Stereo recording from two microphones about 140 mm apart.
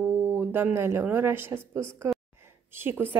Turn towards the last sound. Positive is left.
turn(degrees=-15)  # may be behind; listen again after turning